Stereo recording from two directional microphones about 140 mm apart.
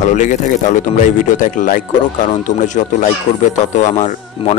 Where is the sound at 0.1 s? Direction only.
65° left (ahead or behind).